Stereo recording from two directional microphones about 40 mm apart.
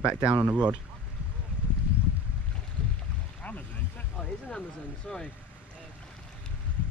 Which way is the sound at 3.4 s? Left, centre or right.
Left.